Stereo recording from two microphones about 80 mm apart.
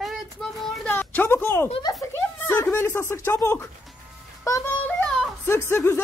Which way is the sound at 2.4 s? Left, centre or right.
Left.